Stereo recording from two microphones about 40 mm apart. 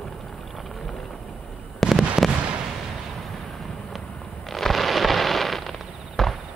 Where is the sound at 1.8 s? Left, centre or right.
Centre.